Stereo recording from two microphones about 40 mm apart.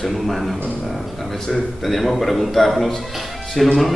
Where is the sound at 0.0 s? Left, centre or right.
Centre.